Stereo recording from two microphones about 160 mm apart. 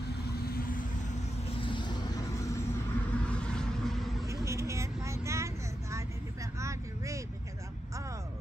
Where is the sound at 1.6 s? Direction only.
30° left (ahead or behind).